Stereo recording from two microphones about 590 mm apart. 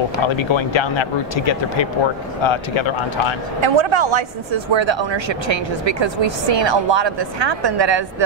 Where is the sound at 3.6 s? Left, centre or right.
Right.